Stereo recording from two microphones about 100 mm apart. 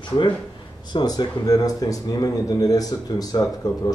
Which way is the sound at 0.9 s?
40° left (ahead or behind).